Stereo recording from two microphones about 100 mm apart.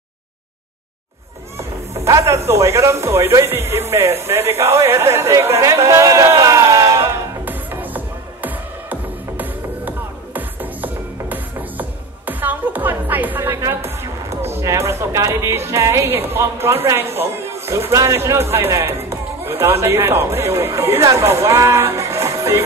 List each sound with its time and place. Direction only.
2.0 s speech: 30° right (ahead or behind)
7.4 s music: 20° right (ahead or behind)
13.6 s speech: 30° right (ahead or behind)